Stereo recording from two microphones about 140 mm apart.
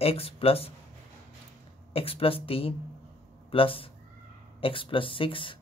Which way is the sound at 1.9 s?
45° left (ahead or behind).